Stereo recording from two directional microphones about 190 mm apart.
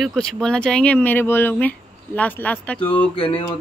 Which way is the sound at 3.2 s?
30° left (ahead or behind).